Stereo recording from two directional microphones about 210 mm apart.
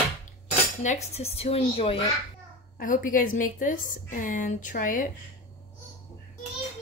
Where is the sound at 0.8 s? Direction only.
35° left (ahead or behind).